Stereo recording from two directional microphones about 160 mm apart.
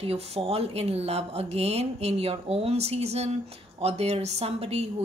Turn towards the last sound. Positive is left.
turn(degrees=-40)  # may be behind; listen again after turning